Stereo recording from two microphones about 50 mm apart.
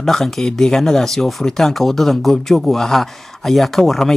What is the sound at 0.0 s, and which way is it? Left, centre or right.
Speech, centre.